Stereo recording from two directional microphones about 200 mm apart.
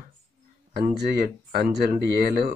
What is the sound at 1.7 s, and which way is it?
Speech, 50° right (ahead or behind).